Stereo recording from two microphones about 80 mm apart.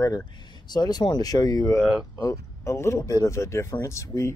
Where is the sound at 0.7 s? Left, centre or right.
Left.